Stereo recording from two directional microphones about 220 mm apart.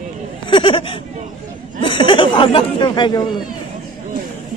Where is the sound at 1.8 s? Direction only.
25° left (ahead or behind).